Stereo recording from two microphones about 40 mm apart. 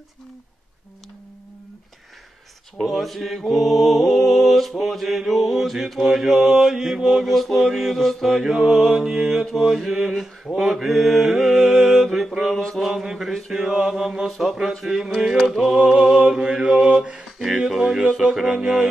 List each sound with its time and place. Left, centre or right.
2.8 s mantra: centre
7.2 s music: centre
8.6 s mantra: centre
12.5 s mantra: centre
12.8 s mantra: centre
14.4 s music: centre
15.8 s mantra: centre
16.9 s a sound: right
17.7 s mantra: centre